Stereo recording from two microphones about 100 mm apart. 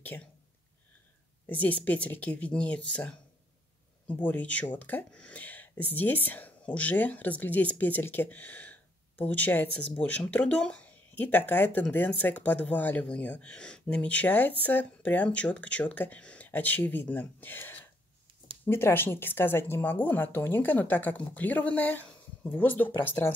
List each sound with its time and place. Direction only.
0.1 s speech: 25° left (ahead or behind)
1.5 s speech: 15° left (ahead or behind)